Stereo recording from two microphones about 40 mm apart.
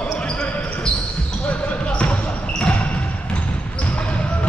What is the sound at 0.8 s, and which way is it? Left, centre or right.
Basketball bounce, centre.